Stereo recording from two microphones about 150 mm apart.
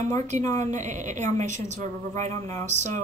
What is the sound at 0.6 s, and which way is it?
A woman's voice, 55° right (ahead or behind).